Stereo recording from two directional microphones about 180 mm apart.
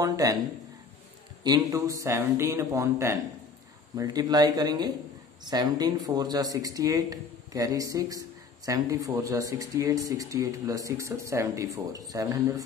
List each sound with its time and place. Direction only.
0.0 s speech: 20° right (ahead or behind)
1.4 s speech: 20° right (ahead or behind)